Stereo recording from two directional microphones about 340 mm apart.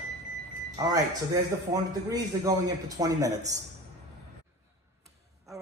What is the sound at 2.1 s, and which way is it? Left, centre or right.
A man's voice, centre.